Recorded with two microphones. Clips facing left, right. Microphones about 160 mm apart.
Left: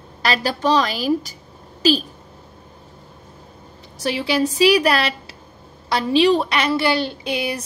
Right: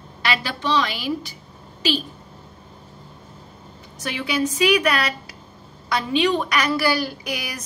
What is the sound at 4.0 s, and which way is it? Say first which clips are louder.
A woman's voice: left 4 dB; 30° left (ahead or behind).